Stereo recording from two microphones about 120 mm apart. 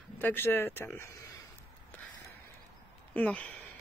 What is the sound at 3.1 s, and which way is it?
Speech, 10° left (ahead or behind).